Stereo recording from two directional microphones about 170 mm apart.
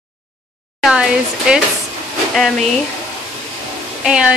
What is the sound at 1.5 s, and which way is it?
Speech, 5° right (ahead or behind).